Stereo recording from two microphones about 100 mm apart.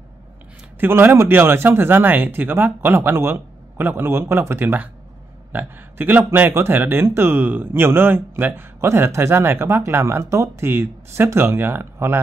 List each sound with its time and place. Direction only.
0.7 s speech: 20° right (ahead or behind)